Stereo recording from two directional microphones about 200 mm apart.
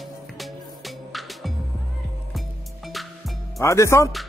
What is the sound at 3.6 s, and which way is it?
Speech, 15° left (ahead or behind).